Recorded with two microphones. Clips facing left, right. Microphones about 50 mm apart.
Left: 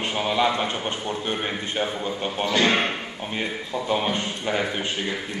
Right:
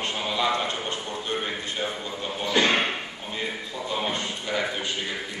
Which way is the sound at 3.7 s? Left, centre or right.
Left.